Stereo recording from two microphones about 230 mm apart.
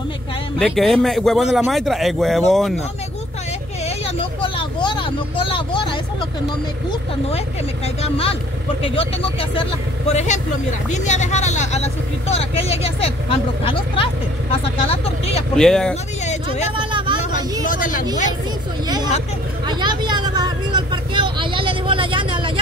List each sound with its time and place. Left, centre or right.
0.6 s a man's voice: centre
3.8 s vehicle: left
6.9 s speech: left
15.5 s a man's voice: centre
16.7 s a sound: right
17.6 s speech: left
19.6 s vehicle: centre